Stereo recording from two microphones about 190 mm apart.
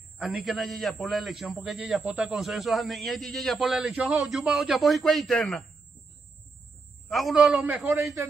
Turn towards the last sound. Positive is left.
turn(degrees=-5)  # may be behind; listen again after turning